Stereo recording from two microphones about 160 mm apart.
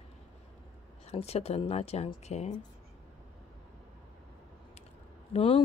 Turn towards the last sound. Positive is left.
turn(degrees=30)  # may be behind; listen again after turning